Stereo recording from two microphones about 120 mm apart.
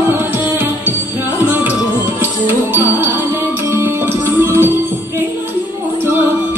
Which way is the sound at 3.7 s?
20° right (ahead or behind).